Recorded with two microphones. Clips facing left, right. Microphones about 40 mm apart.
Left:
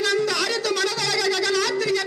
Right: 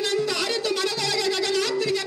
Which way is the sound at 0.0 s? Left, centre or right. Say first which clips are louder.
Left 3 dB; right.